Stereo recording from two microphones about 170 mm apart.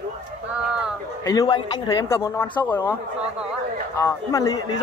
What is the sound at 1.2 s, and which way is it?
Speech, 25° left (ahead or behind).